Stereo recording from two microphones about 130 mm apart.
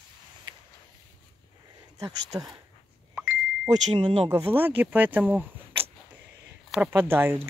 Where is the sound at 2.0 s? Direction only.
30° right (ahead or behind).